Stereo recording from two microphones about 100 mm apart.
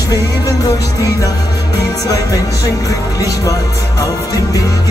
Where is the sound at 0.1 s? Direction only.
35° left (ahead or behind).